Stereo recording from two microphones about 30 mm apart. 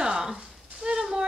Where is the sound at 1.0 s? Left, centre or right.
Right.